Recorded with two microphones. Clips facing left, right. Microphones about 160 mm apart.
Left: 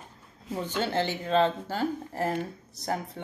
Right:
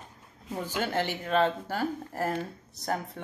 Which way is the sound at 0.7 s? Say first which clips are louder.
Left 1 dB; 25° left (ahead or behind).